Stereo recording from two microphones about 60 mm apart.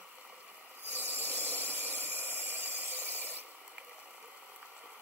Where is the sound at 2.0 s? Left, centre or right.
Right.